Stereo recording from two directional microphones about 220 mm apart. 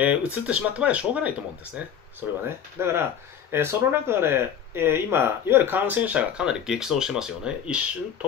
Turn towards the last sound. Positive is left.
turn(degrees=-5)  # may be behind; listen again after turning